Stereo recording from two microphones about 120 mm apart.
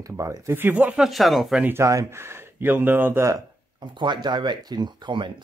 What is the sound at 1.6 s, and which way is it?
Speech, 20° right (ahead or behind).